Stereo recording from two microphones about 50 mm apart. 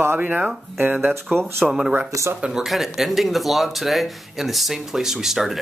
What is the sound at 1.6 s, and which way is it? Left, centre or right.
Speech, centre.